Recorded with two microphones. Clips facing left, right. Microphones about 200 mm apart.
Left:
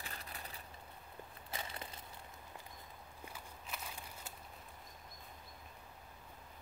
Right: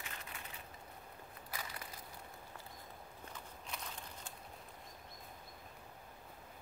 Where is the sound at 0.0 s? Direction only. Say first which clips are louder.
Left 1 dB; 35° left (ahead or behind).